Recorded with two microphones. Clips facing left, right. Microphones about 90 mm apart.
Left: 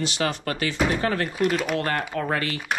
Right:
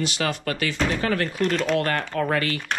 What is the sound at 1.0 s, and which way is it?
Speech, 25° left (ahead or behind).